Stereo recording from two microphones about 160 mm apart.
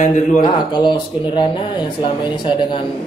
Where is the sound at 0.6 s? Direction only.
30° left (ahead or behind).